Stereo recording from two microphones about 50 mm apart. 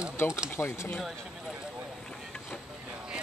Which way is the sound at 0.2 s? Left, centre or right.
Left.